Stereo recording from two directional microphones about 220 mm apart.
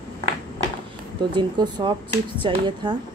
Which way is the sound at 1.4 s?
20° right (ahead or behind).